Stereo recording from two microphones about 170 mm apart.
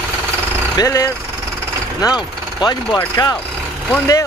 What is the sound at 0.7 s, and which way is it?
Speech, 20° left (ahead or behind).